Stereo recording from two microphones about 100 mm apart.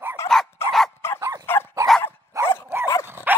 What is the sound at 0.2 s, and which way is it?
Dog, 25° left (ahead or behind).